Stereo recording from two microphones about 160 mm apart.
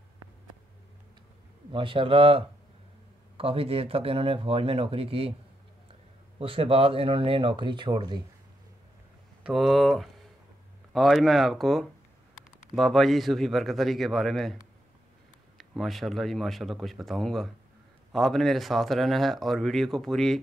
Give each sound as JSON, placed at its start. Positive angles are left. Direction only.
{"t": 1.7, "sound": "speech", "side_deg": -30}
{"t": 6.4, "sound": "speech", "side_deg": -35}
{"t": 9.4, "sound": "speech", "side_deg": 0}